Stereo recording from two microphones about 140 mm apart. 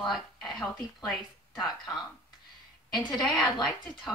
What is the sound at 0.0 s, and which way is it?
Speech, centre (ahead or behind).